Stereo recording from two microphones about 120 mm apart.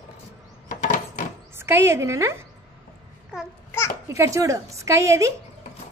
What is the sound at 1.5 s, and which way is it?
Speech, 20° right (ahead or behind).